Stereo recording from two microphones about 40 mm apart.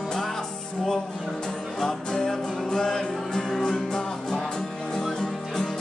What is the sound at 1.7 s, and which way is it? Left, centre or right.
Music, centre.